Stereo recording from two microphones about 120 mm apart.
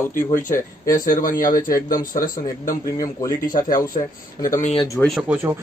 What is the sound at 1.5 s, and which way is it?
Speech, 30° left (ahead or behind).